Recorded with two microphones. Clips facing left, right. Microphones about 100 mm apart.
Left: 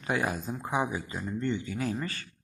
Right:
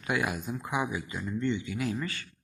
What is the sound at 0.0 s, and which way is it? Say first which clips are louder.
Speech: left 1 dB; 35° left (ahead or behind).